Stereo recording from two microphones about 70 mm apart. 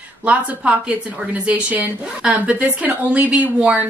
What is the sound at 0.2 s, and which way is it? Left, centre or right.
A woman's voice, centre.